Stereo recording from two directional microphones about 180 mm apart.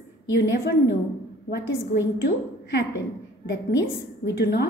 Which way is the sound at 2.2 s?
70° left (ahead or behind).